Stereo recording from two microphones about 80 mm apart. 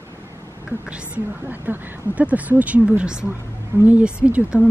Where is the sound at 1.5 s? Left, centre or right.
Centre.